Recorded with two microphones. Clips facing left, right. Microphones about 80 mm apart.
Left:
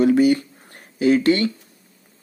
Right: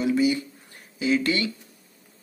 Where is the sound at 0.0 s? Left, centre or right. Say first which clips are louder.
Left 7 dB; left.